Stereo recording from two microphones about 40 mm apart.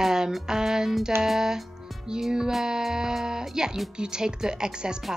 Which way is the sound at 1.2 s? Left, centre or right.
Centre.